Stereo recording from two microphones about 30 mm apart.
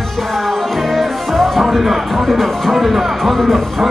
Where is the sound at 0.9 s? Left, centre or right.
Centre.